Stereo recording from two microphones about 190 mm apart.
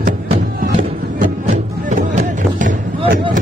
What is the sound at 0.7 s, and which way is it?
Music, 40° right (ahead or behind).